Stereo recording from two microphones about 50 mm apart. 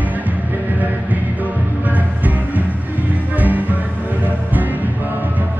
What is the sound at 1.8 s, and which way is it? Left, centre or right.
Music, right.